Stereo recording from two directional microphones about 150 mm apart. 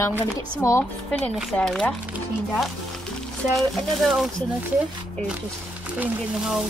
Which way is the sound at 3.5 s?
Centre (ahead or behind).